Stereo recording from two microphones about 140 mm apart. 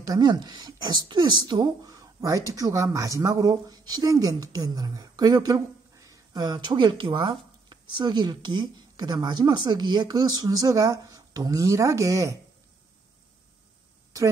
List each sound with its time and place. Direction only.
0.0 s speech: 30° right (ahead or behind)